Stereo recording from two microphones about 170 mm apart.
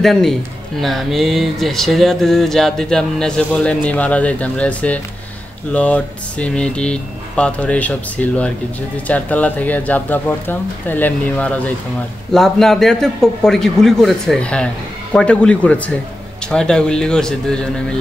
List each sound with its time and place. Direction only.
0.0 s speech: centre (ahead or behind)